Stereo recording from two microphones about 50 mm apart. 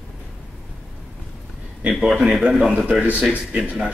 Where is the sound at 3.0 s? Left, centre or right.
Right.